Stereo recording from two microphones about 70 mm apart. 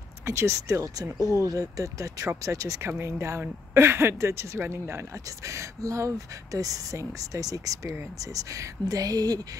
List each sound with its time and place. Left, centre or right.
0.2 s speech: right